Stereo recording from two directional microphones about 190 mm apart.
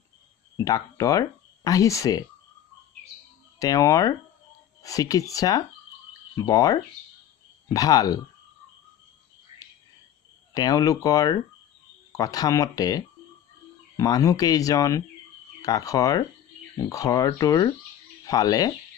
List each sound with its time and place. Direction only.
0.6 s speech: 20° left (ahead or behind)
3.5 s speech: 20° left (ahead or behind)
10.5 s speech: 20° left (ahead or behind)